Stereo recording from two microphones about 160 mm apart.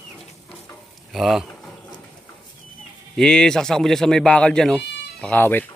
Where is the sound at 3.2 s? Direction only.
5° left (ahead or behind).